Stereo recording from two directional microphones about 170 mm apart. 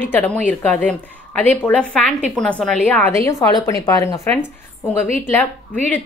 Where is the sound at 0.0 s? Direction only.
10° left (ahead or behind).